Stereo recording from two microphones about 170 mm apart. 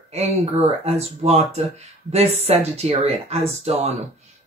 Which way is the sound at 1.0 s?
40° right (ahead or behind).